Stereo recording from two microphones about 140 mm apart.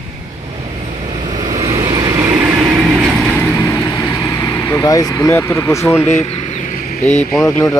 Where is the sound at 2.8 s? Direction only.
10° right (ahead or behind).